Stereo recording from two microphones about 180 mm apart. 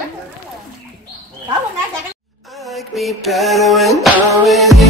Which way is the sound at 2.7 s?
Centre (ahead or behind).